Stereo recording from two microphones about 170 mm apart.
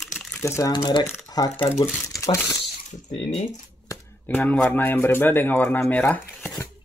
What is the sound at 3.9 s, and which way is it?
Speech, 10° left (ahead or behind).